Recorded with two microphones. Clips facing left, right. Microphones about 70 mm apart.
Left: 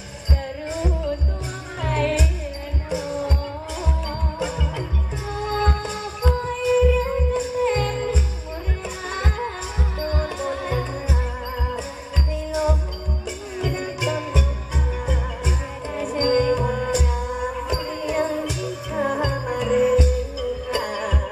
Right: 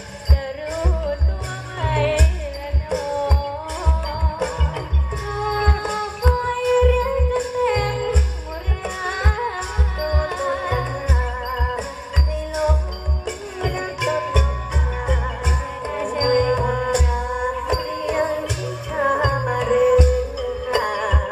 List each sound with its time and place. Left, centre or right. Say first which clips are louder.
0.3 s music: right 2 dB; right
2.9 s music: right 4 dB; right
15.9 s music: right 1 dB; right